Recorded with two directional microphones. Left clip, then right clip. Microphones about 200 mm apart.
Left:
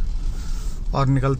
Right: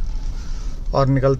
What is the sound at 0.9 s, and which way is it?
Speech, 5° right (ahead or behind).